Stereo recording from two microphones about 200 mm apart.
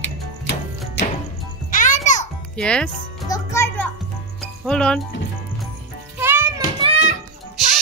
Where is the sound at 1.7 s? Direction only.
40° left (ahead or behind).